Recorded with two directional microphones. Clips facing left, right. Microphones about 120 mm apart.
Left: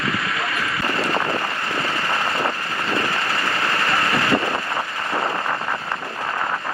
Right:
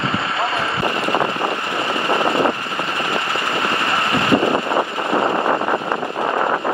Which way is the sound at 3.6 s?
20° right (ahead or behind).